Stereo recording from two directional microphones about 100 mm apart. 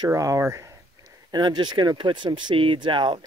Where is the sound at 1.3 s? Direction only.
45° right (ahead or behind).